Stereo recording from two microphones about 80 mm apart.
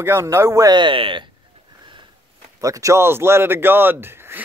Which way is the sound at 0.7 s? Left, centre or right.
Right.